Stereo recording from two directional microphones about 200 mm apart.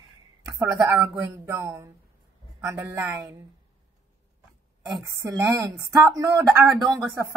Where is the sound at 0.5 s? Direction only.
15° right (ahead or behind).